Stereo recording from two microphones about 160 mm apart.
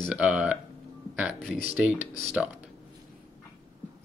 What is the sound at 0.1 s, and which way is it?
Speech, 5° right (ahead or behind).